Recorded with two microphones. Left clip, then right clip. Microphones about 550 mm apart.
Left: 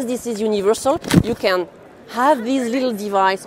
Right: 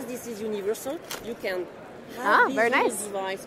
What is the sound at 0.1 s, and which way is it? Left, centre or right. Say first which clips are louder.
Speech: left 11 dB; left.